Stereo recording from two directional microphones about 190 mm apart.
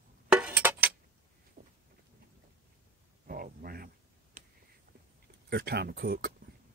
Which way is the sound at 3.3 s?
50° right (ahead or behind).